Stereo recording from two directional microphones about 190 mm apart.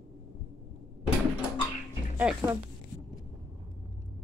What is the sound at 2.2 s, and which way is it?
Speech, 10° right (ahead or behind).